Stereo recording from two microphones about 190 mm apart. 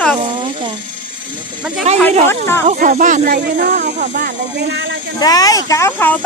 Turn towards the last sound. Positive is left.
turn(degrees=10)  # may be behind; listen again after turning